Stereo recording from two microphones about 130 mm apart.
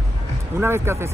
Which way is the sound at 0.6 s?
20° right (ahead or behind).